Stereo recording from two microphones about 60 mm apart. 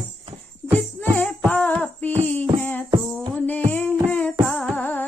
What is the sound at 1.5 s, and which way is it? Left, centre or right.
Child singing, left.